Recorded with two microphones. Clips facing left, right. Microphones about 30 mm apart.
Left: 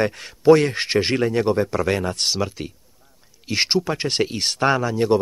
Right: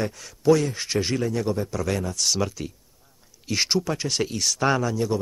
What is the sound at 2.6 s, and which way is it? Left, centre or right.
Speech, left.